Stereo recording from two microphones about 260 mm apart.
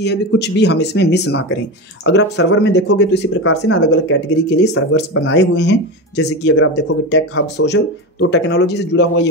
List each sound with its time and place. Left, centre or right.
0.0 s speech: left